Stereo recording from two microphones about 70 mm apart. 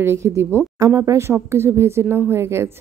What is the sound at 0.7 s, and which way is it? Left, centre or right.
Speech, right.